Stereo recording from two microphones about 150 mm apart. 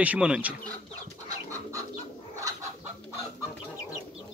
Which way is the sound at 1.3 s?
20° right (ahead or behind).